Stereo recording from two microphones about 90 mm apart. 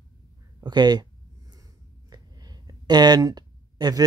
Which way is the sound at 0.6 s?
50° right (ahead or behind).